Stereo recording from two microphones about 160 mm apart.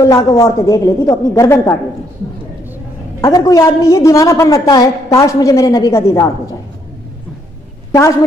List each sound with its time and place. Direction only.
0.0 s a woman's voice: 20° left (ahead or behind)
3.2 s a woman's voice: 20° left (ahead or behind)